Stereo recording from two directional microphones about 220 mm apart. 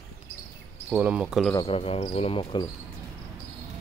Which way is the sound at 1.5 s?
20° left (ahead or behind).